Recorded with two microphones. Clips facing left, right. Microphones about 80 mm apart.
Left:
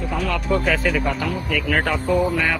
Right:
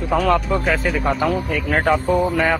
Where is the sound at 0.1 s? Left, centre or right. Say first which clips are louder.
Right 9 dB; right.